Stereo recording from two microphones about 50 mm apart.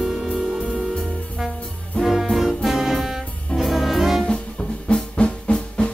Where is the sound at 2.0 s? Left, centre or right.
Centre.